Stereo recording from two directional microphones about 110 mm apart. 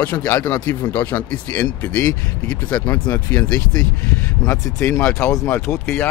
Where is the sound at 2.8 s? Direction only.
35° left (ahead or behind).